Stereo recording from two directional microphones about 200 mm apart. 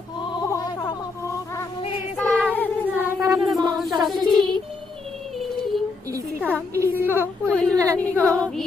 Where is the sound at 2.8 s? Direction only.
10° right (ahead or behind).